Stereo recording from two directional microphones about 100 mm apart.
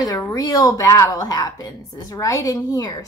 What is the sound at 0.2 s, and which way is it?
A woman's voice, 35° left (ahead or behind).